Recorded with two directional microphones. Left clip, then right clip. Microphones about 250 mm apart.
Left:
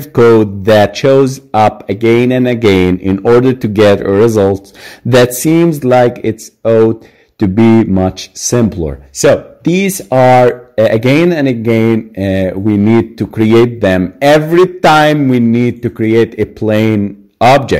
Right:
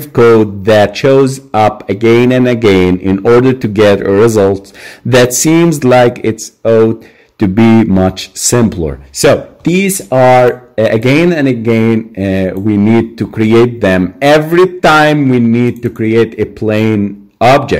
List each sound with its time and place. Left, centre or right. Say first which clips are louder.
0.1 s speech: right 1 dB; centre